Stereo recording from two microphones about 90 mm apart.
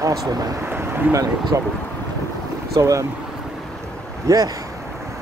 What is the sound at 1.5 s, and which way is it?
Speech, 30° right (ahead or behind).